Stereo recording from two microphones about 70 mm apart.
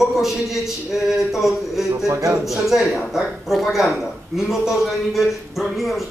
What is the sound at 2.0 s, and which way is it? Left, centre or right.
Speech, right.